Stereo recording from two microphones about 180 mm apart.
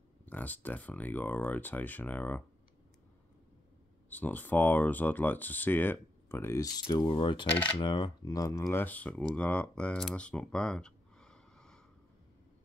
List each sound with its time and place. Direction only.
0.2 s speech: 10° left (ahead or behind)
4.1 s speech: 10° left (ahead or behind)